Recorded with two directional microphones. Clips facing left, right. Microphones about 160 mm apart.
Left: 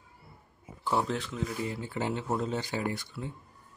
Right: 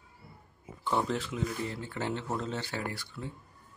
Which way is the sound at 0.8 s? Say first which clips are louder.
Left 1 dB; centre (ahead or behind).